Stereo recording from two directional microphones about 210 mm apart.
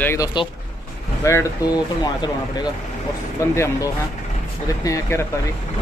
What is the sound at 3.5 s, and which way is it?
Speech, 15° left (ahead or behind).